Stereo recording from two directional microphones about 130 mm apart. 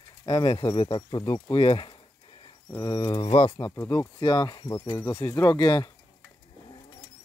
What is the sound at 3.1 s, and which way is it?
Speech, 45° left (ahead or behind).